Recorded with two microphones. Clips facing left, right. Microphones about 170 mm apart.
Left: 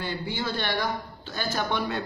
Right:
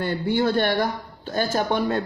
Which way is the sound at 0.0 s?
60° right (ahead or behind).